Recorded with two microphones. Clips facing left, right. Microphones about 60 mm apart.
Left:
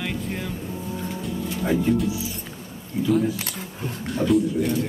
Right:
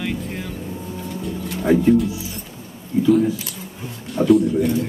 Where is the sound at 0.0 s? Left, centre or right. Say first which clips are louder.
Right 2 dB; centre.